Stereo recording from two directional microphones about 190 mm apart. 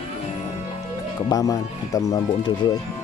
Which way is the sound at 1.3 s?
20° left (ahead or behind).